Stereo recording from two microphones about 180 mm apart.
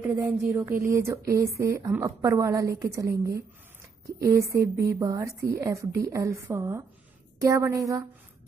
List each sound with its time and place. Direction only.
0.1 s a woman's voice: 15° right (ahead or behind)